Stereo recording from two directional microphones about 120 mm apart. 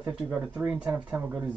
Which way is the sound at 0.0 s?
10° right (ahead or behind).